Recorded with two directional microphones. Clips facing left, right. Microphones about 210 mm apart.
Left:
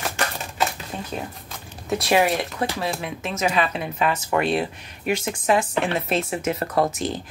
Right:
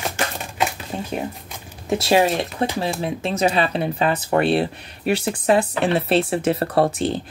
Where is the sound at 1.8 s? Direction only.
25° right (ahead or behind).